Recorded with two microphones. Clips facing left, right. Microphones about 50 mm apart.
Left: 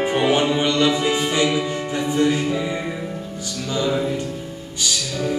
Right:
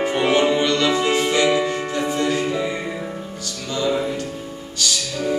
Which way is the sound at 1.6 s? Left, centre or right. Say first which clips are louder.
Right 2 dB; right.